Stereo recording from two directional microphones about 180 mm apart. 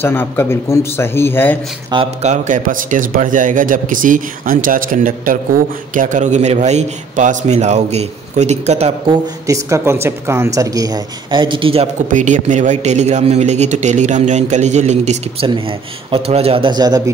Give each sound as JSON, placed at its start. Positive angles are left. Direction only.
{"t": 0.0, "sound": "a man's voice", "side_deg": 10}
{"t": 1.9, "sound": "speech", "side_deg": -25}
{"t": 2.2, "sound": "speech", "side_deg": -40}
{"t": 9.5, "sound": "speech", "side_deg": -15}
{"t": 12.1, "sound": "a man's voice", "side_deg": -45}